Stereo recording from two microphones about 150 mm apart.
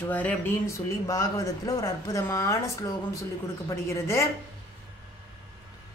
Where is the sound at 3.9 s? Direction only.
20° left (ahead or behind).